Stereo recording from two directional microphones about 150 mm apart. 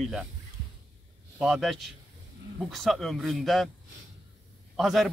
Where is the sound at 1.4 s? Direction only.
Centre (ahead or behind).